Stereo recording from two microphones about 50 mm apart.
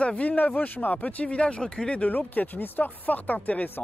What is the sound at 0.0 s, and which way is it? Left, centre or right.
Speech, left.